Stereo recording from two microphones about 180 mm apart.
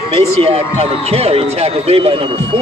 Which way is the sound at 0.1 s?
35° right (ahead or behind).